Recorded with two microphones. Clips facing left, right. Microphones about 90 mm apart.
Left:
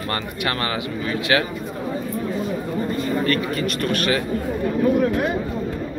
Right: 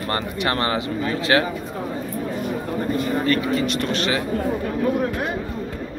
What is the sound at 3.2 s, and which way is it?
Speech, 20° right (ahead or behind).